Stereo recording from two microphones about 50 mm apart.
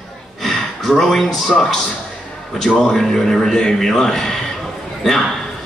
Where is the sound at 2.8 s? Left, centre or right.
Centre.